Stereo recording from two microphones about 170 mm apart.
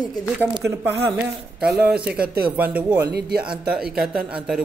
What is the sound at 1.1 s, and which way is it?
Speech, centre (ahead or behind).